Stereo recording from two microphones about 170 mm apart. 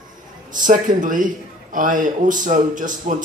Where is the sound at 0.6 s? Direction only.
50° right (ahead or behind).